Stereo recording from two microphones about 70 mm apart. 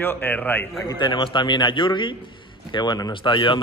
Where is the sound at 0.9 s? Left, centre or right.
Left.